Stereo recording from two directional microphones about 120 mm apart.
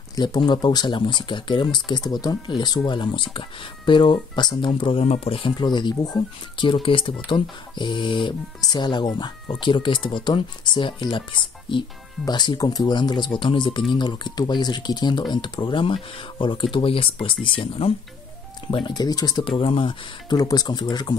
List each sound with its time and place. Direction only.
0.1 s speech: 35° left (ahead or behind)
5.0 s speech: 55° left (ahead or behind)
5.6 s speech: 40° left (ahead or behind)
19.4 s speech: 50° left (ahead or behind)
20.3 s speech: 35° left (ahead or behind)